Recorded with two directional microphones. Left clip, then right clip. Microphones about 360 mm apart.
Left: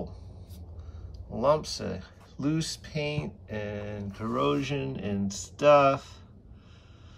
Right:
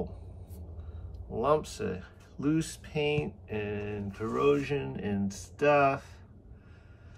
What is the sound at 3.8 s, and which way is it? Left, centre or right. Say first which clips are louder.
Speech: right 1 dB; centre.